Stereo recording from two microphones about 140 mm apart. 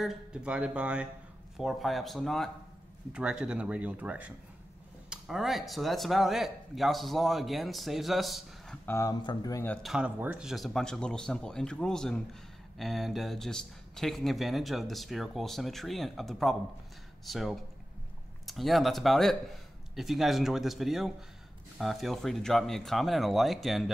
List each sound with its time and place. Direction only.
0.0 s speech: 5° right (ahead or behind)
8.8 s speech: 20° left (ahead or behind)
9.2 s speech: 30° left (ahead or behind)
9.8 s speech: 5° right (ahead or behind)